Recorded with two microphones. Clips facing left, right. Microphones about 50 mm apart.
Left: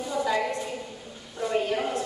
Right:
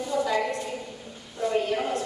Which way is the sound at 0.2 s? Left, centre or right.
Centre.